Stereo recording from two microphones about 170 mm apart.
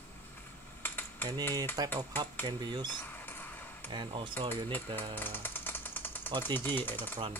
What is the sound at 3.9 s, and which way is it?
Speech, 30° right (ahead or behind).